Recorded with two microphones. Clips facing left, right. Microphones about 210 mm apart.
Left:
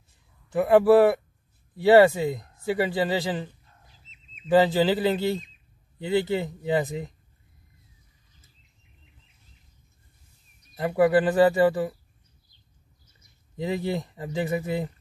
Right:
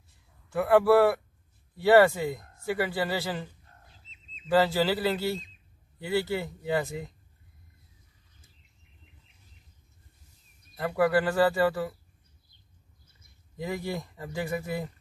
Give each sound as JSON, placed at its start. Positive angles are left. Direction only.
{"t": 0.5, "sound": "speech", "side_deg": 20}
{"t": 4.5, "sound": "speech", "side_deg": 20}
{"t": 10.8, "sound": "speech", "side_deg": 20}
{"t": 13.6, "sound": "speech", "side_deg": 20}